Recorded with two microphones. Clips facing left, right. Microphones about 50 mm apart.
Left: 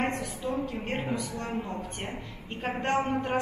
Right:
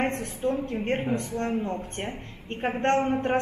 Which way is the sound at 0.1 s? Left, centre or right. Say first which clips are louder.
Right 4 dB; right.